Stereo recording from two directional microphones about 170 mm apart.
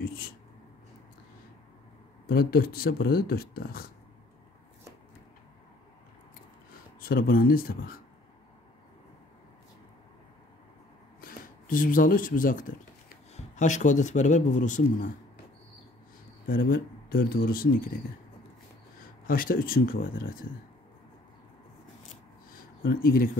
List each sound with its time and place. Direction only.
2.2 s speech: 60° left (ahead or behind)
7.0 s speech: 60° left (ahead or behind)
11.1 s speech: 55° left (ahead or behind)
16.4 s speech: 55° left (ahead or behind)
19.2 s speech: 55° left (ahead or behind)
22.5 s a sound: 55° left (ahead or behind)